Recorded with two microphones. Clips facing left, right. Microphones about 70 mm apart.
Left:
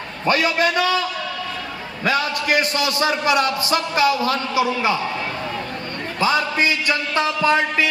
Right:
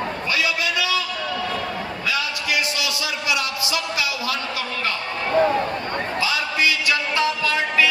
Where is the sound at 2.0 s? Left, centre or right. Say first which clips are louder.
Left 6 dB; left.